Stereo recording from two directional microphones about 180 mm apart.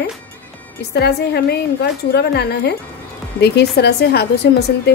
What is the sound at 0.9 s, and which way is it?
A woman's voice, 65° left (ahead or behind).